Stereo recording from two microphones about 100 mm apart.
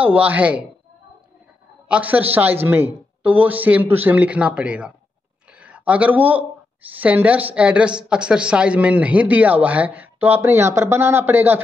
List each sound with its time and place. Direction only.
0.0 s speech: 15° right (ahead or behind)
1.9 s speech: 15° right (ahead or behind)